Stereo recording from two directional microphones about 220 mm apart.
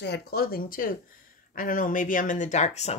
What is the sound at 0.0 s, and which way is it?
Speech, 45° left (ahead or behind).